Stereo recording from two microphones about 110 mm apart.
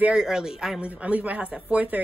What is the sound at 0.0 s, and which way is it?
Speech, 5° right (ahead or behind).